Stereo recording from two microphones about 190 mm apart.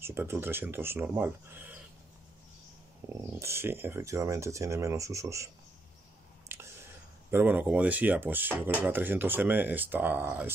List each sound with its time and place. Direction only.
0.0 s speech: 10° right (ahead or behind)
3.0 s speech: 15° right (ahead or behind)
6.5 s a sound: 15° right (ahead or behind)
7.2 s speech: 10° right (ahead or behind)